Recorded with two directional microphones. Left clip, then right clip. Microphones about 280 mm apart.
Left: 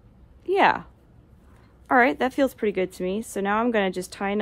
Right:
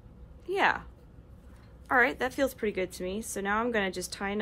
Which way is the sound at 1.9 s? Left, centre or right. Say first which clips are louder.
Left 6 dB; left.